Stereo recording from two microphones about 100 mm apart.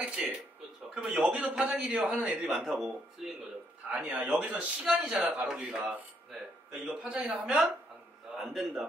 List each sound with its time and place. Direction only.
0.0 s a sound: 10° right (ahead or behind)
0.9 s a man's voice: 10° right (ahead or behind)
3.9 s a man's voice: 10° right (ahead or behind)